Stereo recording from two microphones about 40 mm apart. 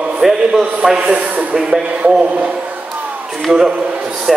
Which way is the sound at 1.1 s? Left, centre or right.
Right.